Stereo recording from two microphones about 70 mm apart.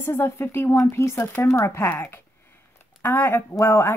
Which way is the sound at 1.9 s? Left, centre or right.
Left.